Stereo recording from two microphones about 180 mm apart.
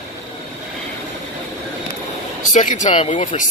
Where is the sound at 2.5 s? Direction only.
45° left (ahead or behind).